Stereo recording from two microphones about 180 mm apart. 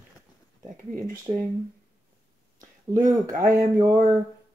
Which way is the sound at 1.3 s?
25° right (ahead or behind).